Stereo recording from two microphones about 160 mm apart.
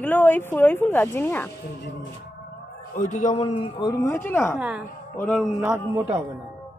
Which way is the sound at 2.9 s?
50° left (ahead or behind).